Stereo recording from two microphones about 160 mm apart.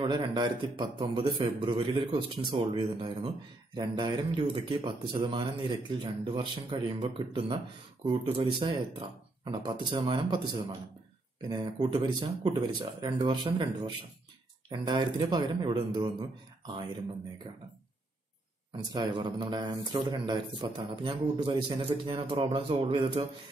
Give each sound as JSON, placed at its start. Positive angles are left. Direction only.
{"t": 0.0, "sound": "a man's voice", "side_deg": -30}
{"t": 18.7, "sound": "a man's voice", "side_deg": -25}